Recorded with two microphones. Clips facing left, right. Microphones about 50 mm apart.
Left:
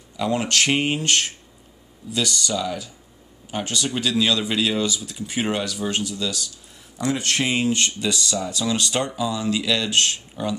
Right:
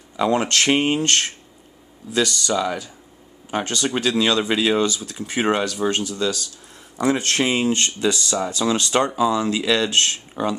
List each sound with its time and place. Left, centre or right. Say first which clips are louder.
0.2 s speech: right 3 dB; right
2.1 s speech: right 4 dB; right